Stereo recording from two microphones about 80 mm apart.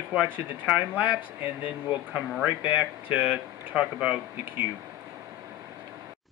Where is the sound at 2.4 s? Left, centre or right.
Right.